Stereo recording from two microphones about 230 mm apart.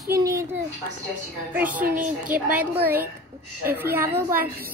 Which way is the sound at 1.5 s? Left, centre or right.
Centre.